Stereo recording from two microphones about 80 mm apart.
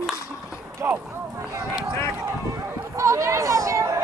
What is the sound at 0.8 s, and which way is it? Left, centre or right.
Speech, right.